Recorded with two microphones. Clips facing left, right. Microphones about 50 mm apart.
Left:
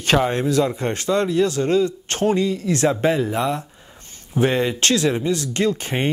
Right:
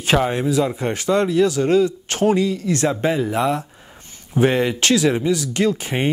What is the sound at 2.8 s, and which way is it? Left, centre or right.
Speech, centre.